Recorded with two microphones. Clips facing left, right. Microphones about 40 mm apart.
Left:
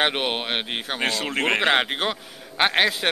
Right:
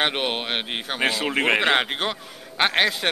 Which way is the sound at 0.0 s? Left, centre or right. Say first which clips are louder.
Left 1 dB; centre.